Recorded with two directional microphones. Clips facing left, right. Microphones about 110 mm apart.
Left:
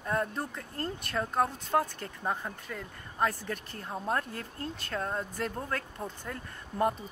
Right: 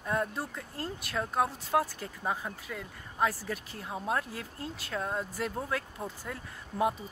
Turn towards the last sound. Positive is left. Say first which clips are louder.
# left 1 dB
turn(degrees=-5)  # may be behind; listen again after turning